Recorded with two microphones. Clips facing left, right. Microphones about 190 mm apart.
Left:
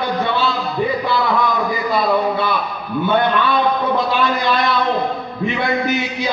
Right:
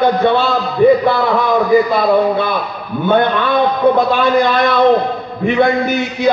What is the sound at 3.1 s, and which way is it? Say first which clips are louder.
A man's voice: right 4 dB; 50° right (ahead or behind).